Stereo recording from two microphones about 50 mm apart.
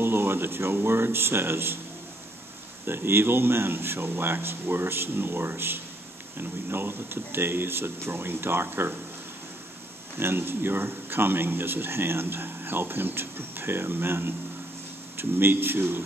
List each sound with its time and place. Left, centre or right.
0.0 s speech: right
2.9 s speech: right
10.1 s speech: right